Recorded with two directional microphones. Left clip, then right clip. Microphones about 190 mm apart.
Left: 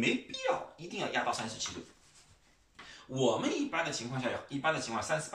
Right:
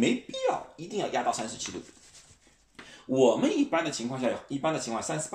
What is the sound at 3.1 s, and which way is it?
Speech, 45° right (ahead or behind).